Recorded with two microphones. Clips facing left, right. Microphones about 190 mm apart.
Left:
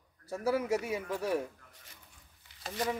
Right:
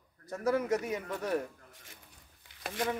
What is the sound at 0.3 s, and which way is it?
Speech, 10° left (ahead or behind).